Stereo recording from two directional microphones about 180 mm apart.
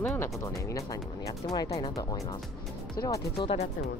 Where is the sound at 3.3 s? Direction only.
30° left (ahead or behind).